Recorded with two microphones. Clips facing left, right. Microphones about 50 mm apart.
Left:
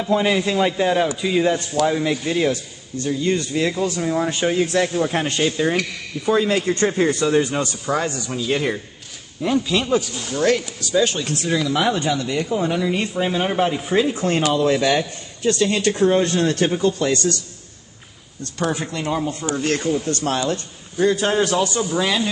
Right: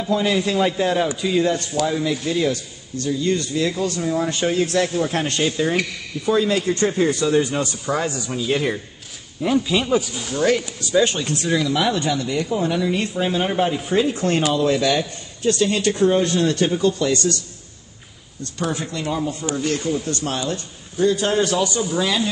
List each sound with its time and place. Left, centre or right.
0.0 s speech: left
0.4 s speech: centre
6.2 s speech: left
7.6 s speech: centre
11.7 s speech: left
12.4 s speech: left
13.2 s speech: centre
14.5 s speech: left
18.7 s speech: left
21.4 s speech: centre